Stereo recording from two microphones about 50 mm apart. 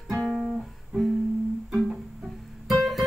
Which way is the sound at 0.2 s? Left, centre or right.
Centre.